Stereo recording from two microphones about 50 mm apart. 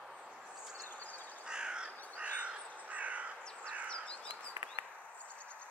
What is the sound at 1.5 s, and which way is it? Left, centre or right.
Crow, centre.